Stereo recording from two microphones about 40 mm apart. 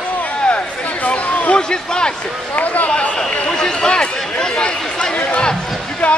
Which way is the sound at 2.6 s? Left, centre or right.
Left.